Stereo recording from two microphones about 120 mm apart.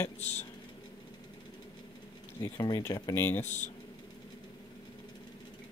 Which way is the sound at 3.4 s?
80° left.